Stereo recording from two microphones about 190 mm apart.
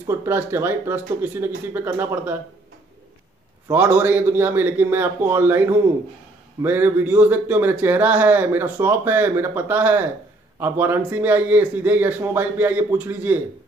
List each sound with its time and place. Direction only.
0.0 s a man's voice: 15° right (ahead or behind)
3.7 s a man's voice: 10° right (ahead or behind)